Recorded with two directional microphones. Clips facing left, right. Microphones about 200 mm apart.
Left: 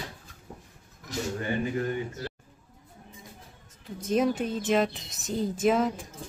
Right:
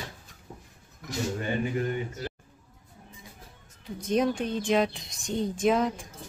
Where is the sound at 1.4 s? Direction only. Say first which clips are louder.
Left 1 dB; 20° right (ahead or behind).